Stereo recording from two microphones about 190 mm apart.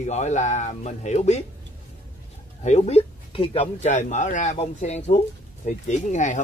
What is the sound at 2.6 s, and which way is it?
Speech, 35° left (ahead or behind).